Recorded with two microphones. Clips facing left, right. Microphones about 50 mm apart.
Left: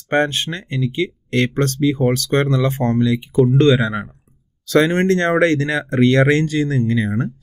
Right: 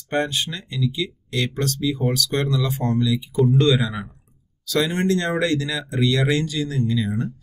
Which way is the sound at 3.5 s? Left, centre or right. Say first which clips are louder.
Left 3 dB; left.